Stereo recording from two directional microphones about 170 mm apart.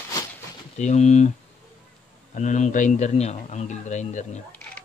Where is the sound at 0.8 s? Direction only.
40° left (ahead or behind).